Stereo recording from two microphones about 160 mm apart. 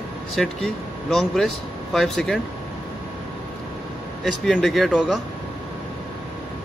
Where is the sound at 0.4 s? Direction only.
Centre (ahead or behind).